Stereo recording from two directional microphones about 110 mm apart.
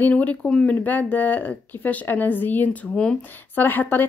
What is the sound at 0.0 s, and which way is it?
Speech, 15° left (ahead or behind).